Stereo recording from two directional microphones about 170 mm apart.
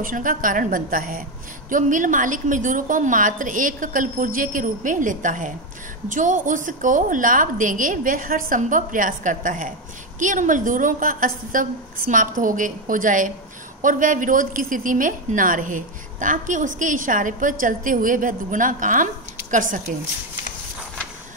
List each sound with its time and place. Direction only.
0.0 s a woman's voice: 55° right (ahead or behind)